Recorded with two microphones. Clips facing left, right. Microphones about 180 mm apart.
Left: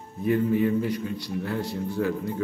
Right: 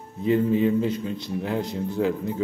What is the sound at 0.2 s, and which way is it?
A man's voice, 20° right (ahead or behind).